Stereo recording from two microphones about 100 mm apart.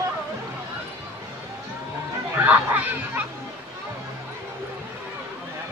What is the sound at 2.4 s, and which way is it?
Speech, 15° right (ahead or behind).